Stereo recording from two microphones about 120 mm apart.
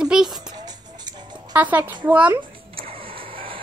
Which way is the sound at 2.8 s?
50° right (ahead or behind).